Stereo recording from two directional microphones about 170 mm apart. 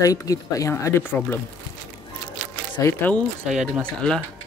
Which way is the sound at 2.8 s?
10° left (ahead or behind).